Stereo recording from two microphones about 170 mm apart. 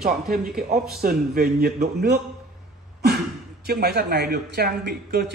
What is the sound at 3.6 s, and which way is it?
A man's voice, 70° right (ahead or behind).